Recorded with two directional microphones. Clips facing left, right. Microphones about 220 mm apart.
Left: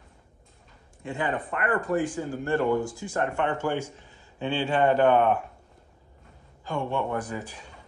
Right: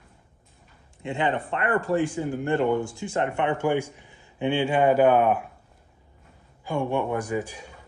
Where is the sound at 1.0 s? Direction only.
25° right (ahead or behind); by 5.4 s 5° right (ahead or behind).